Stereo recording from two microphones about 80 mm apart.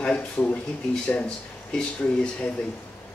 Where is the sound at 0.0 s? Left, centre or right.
Centre.